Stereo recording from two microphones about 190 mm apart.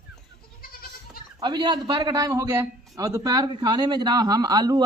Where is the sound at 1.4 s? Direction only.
20° right (ahead or behind).